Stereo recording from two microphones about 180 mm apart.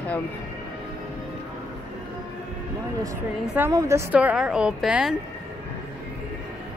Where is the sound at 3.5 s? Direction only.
15° right (ahead or behind).